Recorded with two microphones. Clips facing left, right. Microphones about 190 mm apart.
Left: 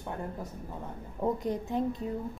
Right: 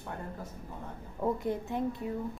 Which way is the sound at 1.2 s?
20° left (ahead or behind).